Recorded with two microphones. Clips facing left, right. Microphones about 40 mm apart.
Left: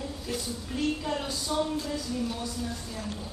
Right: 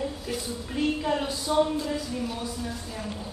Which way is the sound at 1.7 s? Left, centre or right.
Centre.